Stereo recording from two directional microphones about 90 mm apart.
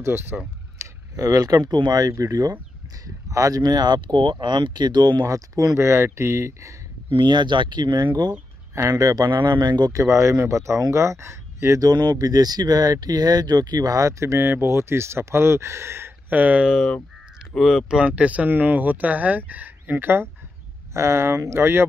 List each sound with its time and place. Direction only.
0.0 s speech: 25° right (ahead or behind)
0.7 s speech: 40° right (ahead or behind)
5.2 s speech: 40° right (ahead or behind)
7.2 s speech: 55° right (ahead or behind)
8.7 s speech: 35° right (ahead or behind)
9.9 s speech: 30° right (ahead or behind)
11.9 s speech: 50° right (ahead or behind); by 16.1 s 30° right (ahead or behind)
16.3 s speech: 15° right (ahead or behind)